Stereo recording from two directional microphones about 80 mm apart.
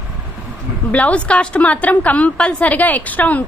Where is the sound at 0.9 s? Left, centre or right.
Centre.